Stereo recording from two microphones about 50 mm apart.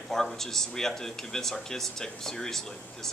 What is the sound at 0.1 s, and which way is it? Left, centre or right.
Speech, centre.